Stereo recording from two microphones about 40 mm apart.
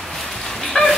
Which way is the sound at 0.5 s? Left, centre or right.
Centre.